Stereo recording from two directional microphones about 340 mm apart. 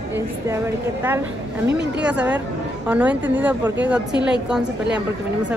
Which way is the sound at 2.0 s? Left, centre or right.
Centre.